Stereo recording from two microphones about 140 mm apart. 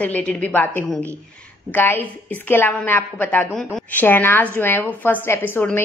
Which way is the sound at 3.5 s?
Centre (ahead or behind).